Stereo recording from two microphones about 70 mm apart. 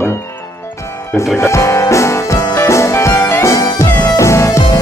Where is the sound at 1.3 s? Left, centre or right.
Left.